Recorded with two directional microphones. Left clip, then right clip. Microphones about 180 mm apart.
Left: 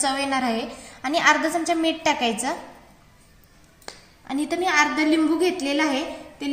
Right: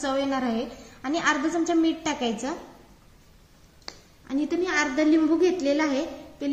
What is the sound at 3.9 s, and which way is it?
A woman's voice, 50° left (ahead or behind).